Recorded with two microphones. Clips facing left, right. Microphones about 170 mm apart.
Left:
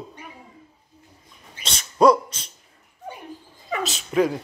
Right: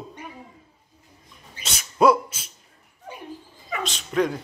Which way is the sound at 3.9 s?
5° left (ahead or behind).